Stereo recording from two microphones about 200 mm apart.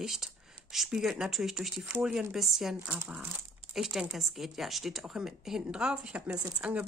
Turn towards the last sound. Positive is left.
turn(degrees=-5)  # may be behind; listen again after turning